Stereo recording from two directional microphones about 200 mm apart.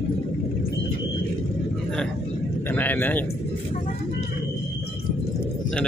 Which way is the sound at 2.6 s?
10° left (ahead or behind).